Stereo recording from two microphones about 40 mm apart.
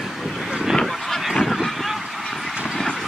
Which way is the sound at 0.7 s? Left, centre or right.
Centre.